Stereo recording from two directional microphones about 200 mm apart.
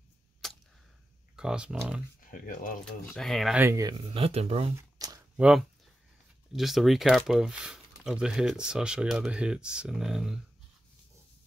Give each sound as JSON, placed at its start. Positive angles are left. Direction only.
{"t": 0.4, "sound": "cap gun", "side_deg": 0}
{"t": 1.3, "sound": "speech", "side_deg": -5}
{"t": 2.1, "sound": "speech", "side_deg": 40}
{"t": 2.8, "sound": "speech", "side_deg": 5}
{"t": 3.6, "sound": "speech", "side_deg": -15}
{"t": 4.7, "sound": "shuffling cards", "side_deg": -15}
{"t": 5.4, "sound": "speech", "side_deg": -5}